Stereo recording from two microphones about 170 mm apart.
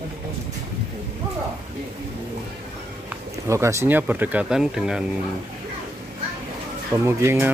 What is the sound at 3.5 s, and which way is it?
Speech, 15° right (ahead or behind).